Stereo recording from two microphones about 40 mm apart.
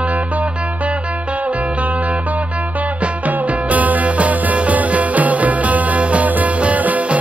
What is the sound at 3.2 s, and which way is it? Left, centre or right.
Music, right.